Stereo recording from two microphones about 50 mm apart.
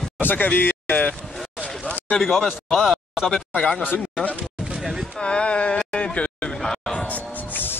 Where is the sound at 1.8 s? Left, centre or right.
Left.